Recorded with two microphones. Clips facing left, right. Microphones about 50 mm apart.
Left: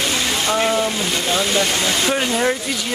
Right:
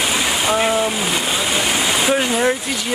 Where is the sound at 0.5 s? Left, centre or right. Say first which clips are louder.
Right 1 dB; centre.